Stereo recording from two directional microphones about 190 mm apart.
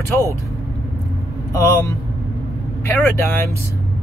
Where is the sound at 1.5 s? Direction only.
15° left (ahead or behind).